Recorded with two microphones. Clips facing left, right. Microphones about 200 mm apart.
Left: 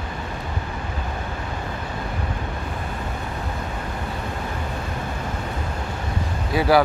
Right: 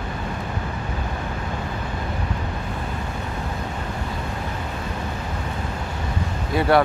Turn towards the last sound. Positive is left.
turn(degrees=0)  # may be behind; listen again after turning